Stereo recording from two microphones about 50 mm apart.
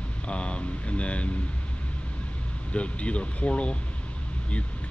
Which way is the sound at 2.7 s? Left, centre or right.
Left.